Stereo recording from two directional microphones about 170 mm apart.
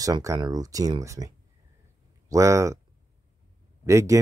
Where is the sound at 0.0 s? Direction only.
20° right (ahead or behind).